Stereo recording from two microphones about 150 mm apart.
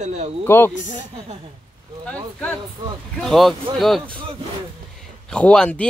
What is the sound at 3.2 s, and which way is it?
Speech, centre (ahead or behind).